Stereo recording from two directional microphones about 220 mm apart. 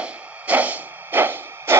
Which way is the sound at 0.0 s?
5° right (ahead or behind).